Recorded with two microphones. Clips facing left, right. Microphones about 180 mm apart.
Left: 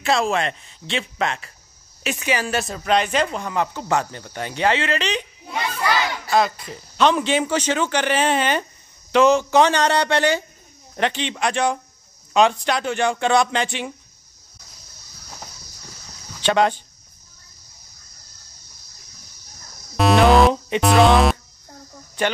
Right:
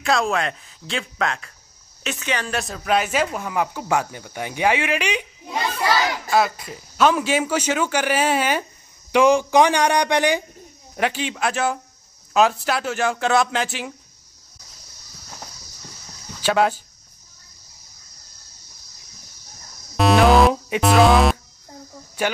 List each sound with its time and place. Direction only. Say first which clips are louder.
0.0 s speech: left 1 dB; centre (ahead or behind)
5.9 s a sound: right 1 dB; 40° right (ahead or behind)
6.3 s speech: left 1 dB; 5° right (ahead or behind)
16.3 s speech: left 1 dB; 5° right (ahead or behind)
20.0 s music: even; centre (ahead or behind)
22.2 s speech: left 1 dB; 10° right (ahead or behind)